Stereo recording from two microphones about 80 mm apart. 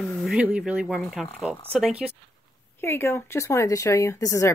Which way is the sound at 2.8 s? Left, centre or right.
Left.